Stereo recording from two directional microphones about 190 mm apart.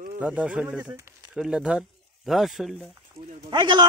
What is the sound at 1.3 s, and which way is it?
Speech, 5° right (ahead or behind).